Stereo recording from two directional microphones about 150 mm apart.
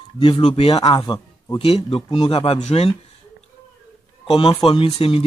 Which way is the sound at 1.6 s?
40° left (ahead or behind).